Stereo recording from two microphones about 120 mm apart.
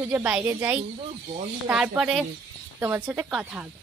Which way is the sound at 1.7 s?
5° right (ahead or behind).